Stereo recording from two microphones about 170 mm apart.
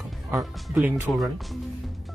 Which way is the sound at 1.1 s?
Centre (ahead or behind).